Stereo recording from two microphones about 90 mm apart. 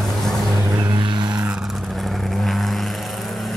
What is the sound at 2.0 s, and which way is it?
Vehicle, centre (ahead or behind).